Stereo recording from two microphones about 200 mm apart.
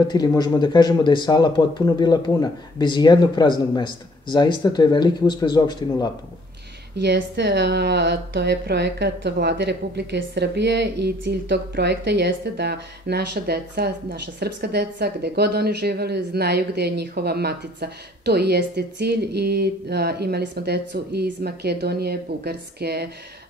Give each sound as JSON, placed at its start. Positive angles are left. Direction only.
{"t": 0.1, "sound": "speech", "side_deg": 20}
{"t": 7.0, "sound": "speech", "side_deg": -60}